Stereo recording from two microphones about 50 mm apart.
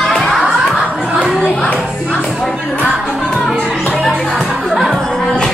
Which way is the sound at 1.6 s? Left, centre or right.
Left.